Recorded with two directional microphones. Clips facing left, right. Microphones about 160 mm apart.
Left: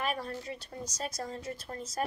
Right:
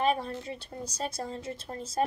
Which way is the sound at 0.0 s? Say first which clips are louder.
Right 6 dB; 25° right (ahead or behind).